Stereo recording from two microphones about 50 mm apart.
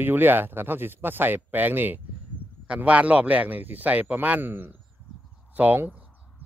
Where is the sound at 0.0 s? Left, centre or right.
Right.